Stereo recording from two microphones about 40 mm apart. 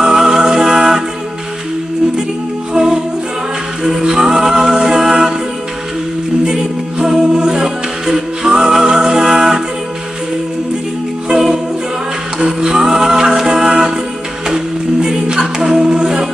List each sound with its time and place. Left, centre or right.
0.0 s music: centre
2.7 s music: centre
3.8 s a capella: centre
6.4 s music: centre
11.2 s music: centre
14.5 s a capella: centre